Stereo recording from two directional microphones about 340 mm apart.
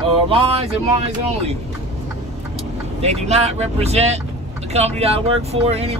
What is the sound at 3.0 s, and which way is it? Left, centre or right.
Speech, centre.